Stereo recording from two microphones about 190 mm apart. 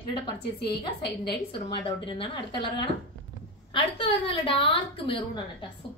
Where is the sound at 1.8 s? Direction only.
25° left (ahead or behind).